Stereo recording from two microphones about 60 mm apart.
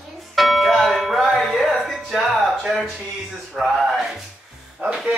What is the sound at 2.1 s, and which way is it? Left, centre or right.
Speech, centre.